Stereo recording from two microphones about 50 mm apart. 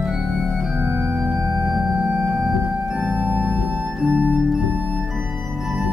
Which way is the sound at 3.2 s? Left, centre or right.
Right.